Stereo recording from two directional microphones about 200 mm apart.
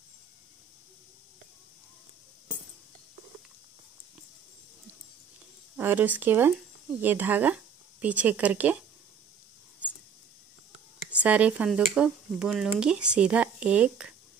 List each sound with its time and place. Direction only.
5.8 s speech: 10° right (ahead or behind)
11.1 s speech: 5° right (ahead or behind)